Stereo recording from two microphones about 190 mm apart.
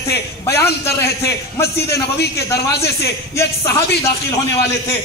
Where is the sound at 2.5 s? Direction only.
60° left (ahead or behind).